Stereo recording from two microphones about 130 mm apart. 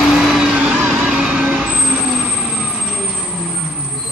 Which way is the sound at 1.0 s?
5° right (ahead or behind).